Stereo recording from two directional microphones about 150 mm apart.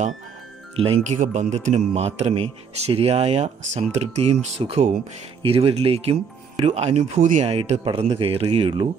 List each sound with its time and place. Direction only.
0.7 s a man's voice: 40° right (ahead or behind)